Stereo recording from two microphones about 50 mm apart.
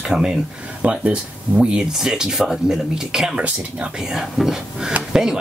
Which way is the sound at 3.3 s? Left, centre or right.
Right.